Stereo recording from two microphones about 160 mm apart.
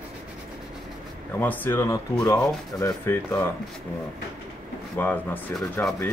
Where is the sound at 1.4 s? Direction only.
15° left (ahead or behind).